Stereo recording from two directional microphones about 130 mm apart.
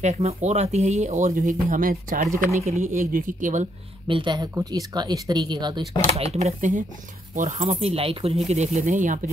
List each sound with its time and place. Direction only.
0.0 s speech: 60° right (ahead or behind); by 2.2 s 90° right
2.5 s speech: 65° right (ahead or behind); by 3.6 s 80° right
4.1 s speech: 35° right (ahead or behind)
6.1 s speech: 55° right (ahead or behind)
8.5 s speech: 60° right (ahead or behind)